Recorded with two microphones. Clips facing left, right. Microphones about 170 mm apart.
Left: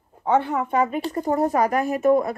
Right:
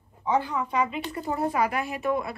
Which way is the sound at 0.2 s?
60° left (ahead or behind).